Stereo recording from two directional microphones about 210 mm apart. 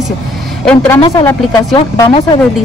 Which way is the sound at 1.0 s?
20° left (ahead or behind).